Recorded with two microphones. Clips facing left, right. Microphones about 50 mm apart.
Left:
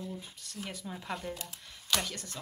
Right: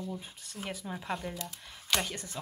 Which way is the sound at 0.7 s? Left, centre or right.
Centre.